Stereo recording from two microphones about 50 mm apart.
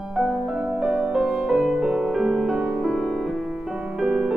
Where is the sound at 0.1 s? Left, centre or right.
Centre.